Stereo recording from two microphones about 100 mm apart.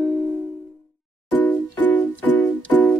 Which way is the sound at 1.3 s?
15° left (ahead or behind).